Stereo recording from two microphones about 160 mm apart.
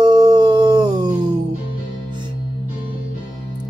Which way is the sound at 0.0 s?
25° right (ahead or behind).